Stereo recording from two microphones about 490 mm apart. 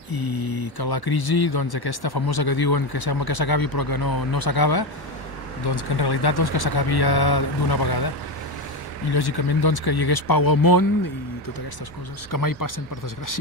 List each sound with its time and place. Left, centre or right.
0.1 s speech: left
9.1 s speech: left
12.3 s speech: left